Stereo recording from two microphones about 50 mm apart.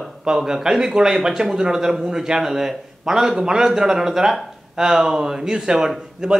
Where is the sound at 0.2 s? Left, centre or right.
Centre.